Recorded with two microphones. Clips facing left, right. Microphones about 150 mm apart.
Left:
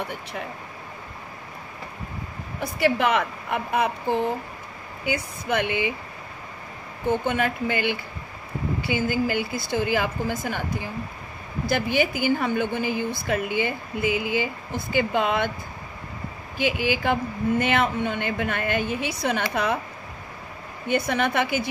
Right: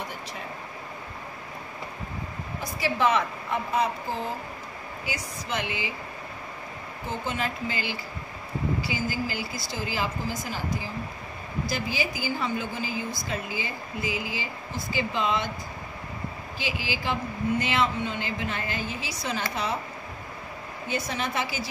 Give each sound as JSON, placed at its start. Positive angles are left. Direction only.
{"t": 2.6, "sound": "a woman's voice", "side_deg": 65}
{"t": 7.1, "sound": "a woman's voice", "side_deg": 60}
{"t": 16.5, "sound": "a woman's voice", "side_deg": 55}
{"t": 20.9, "sound": "a woman's voice", "side_deg": 60}